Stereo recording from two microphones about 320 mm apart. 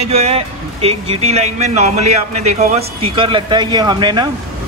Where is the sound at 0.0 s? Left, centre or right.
Centre.